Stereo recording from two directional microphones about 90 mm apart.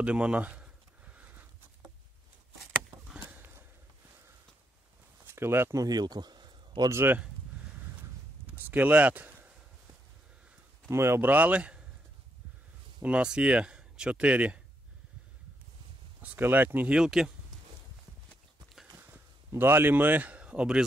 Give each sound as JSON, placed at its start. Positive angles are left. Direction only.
{"t": 0.0, "sound": "a sound", "side_deg": -10}
{"t": 2.6, "sound": "a sound", "side_deg": -10}
{"t": 5.2, "sound": "speech", "side_deg": -25}
{"t": 6.9, "sound": "speech", "side_deg": -25}
{"t": 8.6, "sound": "speech", "side_deg": -20}
{"t": 10.9, "sound": "speech", "side_deg": -30}
{"t": 13.0, "sound": "speech", "side_deg": -10}
{"t": 16.2, "sound": "speech", "side_deg": -20}
{"t": 19.0, "sound": "speech", "side_deg": -25}